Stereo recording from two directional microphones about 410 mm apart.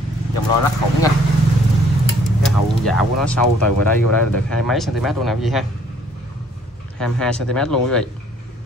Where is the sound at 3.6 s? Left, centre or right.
Left.